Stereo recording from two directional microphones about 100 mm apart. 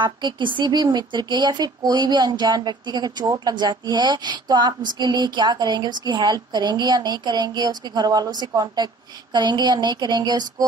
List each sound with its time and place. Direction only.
0.0 s speech: 55° right (ahead or behind)